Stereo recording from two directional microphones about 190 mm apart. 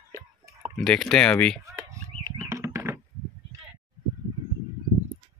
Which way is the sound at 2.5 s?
15° right (ahead or behind).